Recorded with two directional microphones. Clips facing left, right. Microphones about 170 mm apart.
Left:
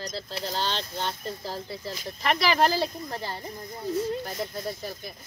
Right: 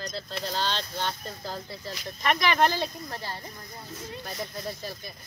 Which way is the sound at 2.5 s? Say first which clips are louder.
Left 1 dB; 10° left (ahead or behind).